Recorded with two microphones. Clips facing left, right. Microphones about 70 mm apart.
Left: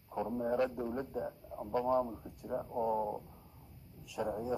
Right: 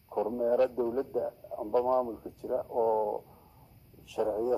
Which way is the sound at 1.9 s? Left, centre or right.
Centre.